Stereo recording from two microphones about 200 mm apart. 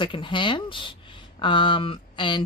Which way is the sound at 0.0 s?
25° left (ahead or behind).